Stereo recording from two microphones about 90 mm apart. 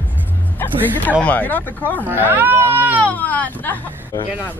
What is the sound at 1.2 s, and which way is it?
Speech, 20° left (ahead or behind).